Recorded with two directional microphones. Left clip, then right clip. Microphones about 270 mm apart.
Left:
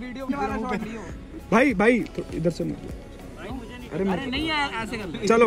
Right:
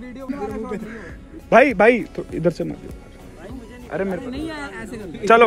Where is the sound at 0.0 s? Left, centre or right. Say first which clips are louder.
Left 1 dB; centre.